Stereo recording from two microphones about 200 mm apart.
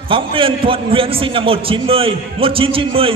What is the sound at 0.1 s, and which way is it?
A man's voice, 25° right (ahead or behind).